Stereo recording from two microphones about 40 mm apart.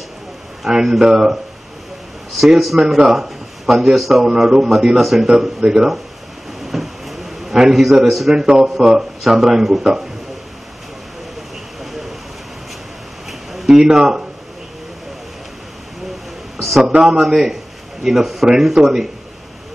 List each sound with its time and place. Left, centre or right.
0.7 s speech: centre
2.3 s a man's voice: centre
6.6 s a sound: centre
8.0 s speech: centre
8.4 s speech: centre
11.8 s a sound: centre
13.7 s speech: centre
16.8 s speech: centre